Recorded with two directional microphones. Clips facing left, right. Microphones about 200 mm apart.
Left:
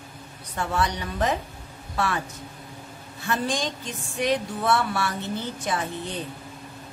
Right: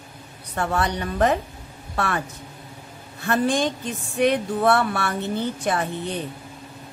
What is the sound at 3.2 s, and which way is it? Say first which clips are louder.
Speech: right 6 dB; 55° right (ahead or behind).